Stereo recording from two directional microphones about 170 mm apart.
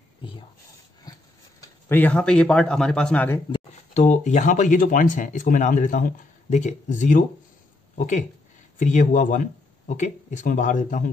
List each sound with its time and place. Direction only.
1.1 s a sound: 25° left (ahead or behind)
1.9 s a man's voice: 10° left (ahead or behind)
3.9 s speech: 45° left (ahead or behind)
8.7 s speech: 45° left (ahead or behind)